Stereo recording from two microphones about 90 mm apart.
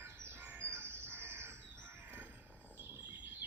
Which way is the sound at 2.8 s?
20° right (ahead or behind).